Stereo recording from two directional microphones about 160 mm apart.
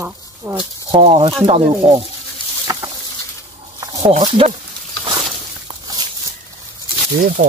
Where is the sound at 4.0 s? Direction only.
45° right (ahead or behind).